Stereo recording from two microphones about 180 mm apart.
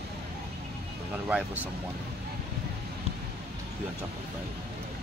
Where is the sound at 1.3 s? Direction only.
10° right (ahead or behind).